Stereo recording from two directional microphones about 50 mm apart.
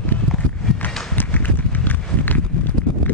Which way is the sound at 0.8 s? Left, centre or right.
Left.